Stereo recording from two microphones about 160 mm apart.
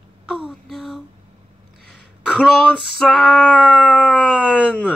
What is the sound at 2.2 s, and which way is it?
Female singing, 5° right (ahead or behind).